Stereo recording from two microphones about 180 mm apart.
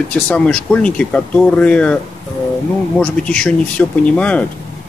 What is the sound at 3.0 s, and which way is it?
Speech, 5° left (ahead or behind).